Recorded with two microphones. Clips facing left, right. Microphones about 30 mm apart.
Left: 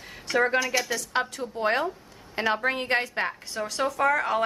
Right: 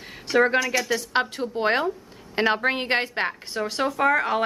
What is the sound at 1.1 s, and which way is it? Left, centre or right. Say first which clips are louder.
A woman's voice: right 2 dB; right.